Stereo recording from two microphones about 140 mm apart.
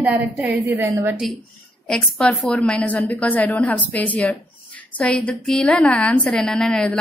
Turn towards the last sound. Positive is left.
turn(degrees=5)  # may be behind; listen again after turning